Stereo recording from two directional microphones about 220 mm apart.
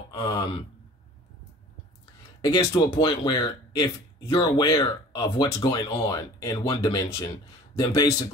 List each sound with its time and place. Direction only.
0.1 s speech: 20° left (ahead or behind)
2.4 s speech: 20° left (ahead or behind)